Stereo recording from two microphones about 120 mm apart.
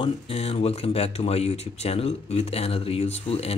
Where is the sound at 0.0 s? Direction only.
55° left (ahead or behind).